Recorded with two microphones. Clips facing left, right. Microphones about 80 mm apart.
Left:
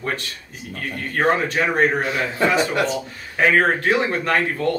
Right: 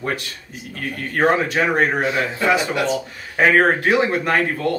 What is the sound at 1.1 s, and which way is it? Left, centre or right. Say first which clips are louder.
Speech: right 2 dB; centre.